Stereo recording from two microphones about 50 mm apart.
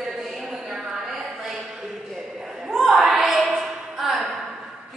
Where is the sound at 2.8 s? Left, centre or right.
Centre.